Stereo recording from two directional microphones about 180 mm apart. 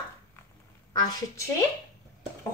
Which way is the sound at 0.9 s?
20° left (ahead or behind).